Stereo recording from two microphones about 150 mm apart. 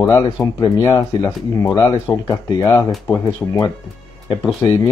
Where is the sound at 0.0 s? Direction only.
20° left (ahead or behind).